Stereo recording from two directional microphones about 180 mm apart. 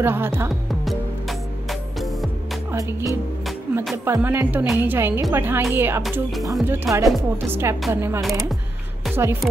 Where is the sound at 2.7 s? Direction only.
15° right (ahead or behind).